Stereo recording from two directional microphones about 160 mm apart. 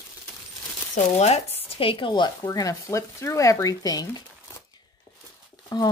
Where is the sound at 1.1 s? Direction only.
40° left (ahead or behind); by 4.2 s 25° left (ahead or behind).